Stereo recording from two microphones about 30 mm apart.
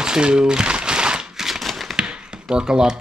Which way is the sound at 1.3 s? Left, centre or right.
Centre.